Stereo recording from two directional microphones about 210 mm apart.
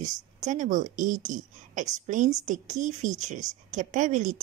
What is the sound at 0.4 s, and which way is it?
A woman's voice, 35° right (ahead or behind).